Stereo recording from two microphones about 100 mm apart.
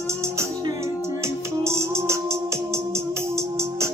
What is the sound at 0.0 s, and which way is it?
Music, 30° right (ahead or behind).